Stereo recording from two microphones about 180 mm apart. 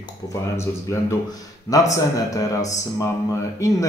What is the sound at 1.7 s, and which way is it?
Speech, 20° left (ahead or behind).